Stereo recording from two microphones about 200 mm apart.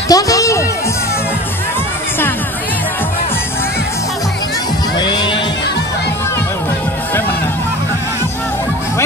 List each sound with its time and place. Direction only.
0.1 s music: 15° left (ahead or behind)
4.9 s music: 20° left (ahead or behind)